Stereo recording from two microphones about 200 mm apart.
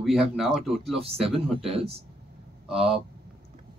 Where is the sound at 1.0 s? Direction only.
30° right (ahead or behind).